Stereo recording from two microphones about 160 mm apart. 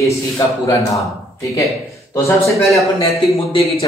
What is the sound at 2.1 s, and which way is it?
Speech, 15° left (ahead or behind).